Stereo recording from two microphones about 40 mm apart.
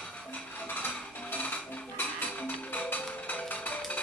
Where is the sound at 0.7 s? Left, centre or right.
Left.